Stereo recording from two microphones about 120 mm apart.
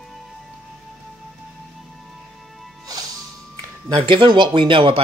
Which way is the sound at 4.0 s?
45° right (ahead or behind).